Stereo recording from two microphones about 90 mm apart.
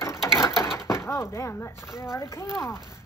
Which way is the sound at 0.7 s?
30° left (ahead or behind).